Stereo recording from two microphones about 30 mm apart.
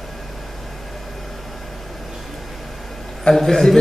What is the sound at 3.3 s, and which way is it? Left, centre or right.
Speech, centre.